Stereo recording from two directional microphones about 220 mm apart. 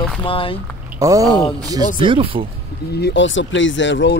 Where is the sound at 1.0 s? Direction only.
15° right (ahead or behind).